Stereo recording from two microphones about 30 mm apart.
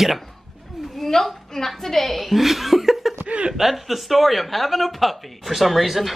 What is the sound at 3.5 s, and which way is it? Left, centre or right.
Speech, centre.